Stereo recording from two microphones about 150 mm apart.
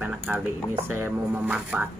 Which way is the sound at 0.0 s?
10° right (ahead or behind).